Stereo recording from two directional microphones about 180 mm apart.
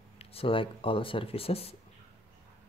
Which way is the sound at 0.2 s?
30° left (ahead or behind).